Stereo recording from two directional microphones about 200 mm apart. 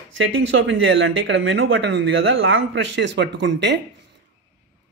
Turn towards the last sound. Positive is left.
turn(degrees=-60)  # may be behind; listen again after turning